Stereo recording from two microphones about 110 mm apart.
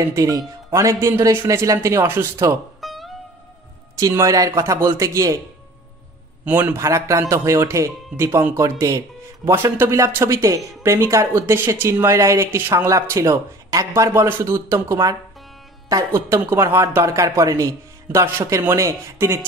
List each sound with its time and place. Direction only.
0.1 s speech: 30° right (ahead or behind)
2.8 s music: centre (ahead or behind)
4.1 s speech: 30° right (ahead or behind)
6.4 s speech: 15° right (ahead or behind)